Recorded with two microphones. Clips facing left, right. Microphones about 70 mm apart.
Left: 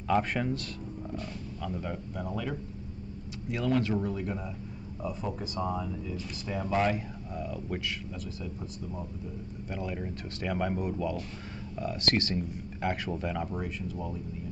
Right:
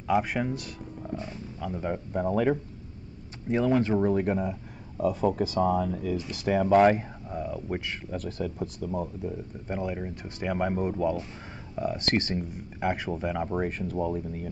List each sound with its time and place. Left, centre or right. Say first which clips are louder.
0.1 s speech: right 2 dB; centre
2.1 s speech: right 13 dB; right
3.4 s speech: right 5 dB; right
4.0 s speech: right 9 dB; right
5.0 s speech: right 10 dB; right
7.0 s speech: right 3 dB; right
8.1 s speech: right 7 dB; right
9.7 s speech: right 4 dB; right
13.5 s speech: right 6 dB; right